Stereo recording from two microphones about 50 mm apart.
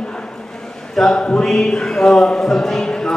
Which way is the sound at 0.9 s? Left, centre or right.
Centre.